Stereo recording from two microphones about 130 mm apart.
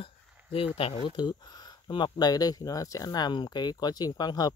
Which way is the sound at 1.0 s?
35° left (ahead or behind).